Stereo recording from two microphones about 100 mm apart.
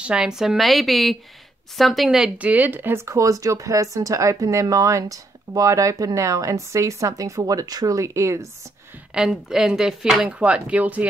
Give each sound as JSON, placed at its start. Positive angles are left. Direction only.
{"t": 0.0, "sound": "a woman's voice", "side_deg": -10}
{"t": 9.1, "sound": "speech", "side_deg": -5}